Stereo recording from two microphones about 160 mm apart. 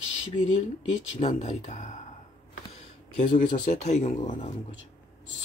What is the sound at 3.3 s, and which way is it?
Speech, 50° left (ahead or behind).